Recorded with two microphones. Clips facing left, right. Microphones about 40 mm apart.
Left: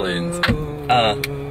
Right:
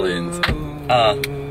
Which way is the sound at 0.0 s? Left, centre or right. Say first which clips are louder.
Right 2 dB; centre.